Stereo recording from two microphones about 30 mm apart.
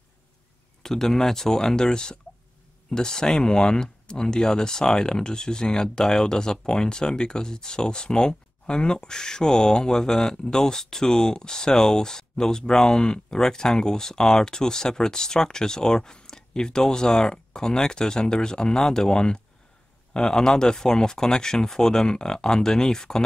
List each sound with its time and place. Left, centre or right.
0.8 s speech: centre